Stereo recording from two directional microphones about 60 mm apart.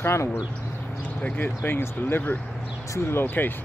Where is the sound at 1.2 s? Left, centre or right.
Left.